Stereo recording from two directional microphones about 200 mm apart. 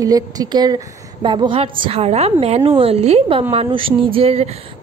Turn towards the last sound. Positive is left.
turn(degrees=-30)  # may be behind; listen again after turning